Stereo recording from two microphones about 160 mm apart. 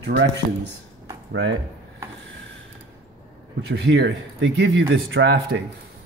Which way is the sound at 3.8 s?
90° right.